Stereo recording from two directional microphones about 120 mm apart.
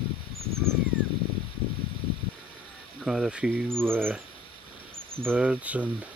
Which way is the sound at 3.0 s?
5° right (ahead or behind).